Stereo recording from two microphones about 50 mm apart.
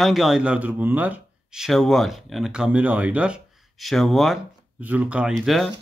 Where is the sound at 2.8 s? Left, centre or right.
Right.